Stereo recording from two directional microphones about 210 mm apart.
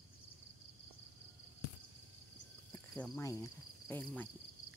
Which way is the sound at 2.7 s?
10° left (ahead or behind).